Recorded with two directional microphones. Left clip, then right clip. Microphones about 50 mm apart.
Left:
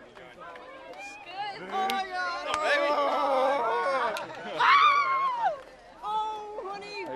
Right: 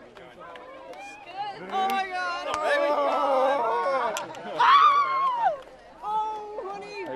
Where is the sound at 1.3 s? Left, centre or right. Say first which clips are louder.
Right 2 dB; left.